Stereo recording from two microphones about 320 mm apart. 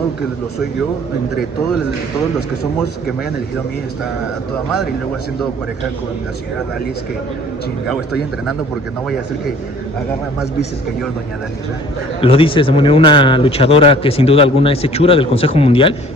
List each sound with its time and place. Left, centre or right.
12.2 s speech: centre